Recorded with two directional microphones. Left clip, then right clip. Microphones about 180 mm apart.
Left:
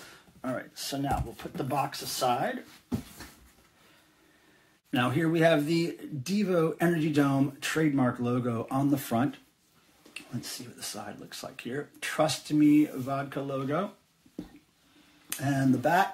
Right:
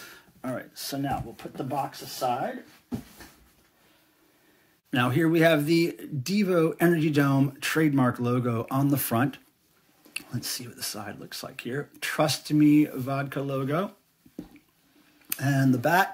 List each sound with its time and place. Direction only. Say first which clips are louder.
0.4 s a sound: even; 25° right (ahead or behind)
1.3 s speech: even; centre (ahead or behind)
4.9 s speech: right 4 dB; 35° right (ahead or behind)
15.2 s speech: right 2 dB; 45° right (ahead or behind)